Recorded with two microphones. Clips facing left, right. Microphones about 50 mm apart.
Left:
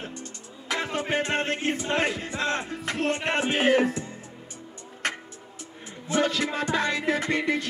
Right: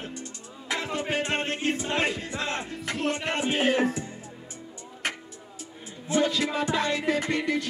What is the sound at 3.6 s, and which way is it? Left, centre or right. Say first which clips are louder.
Music: left 3 dB; left.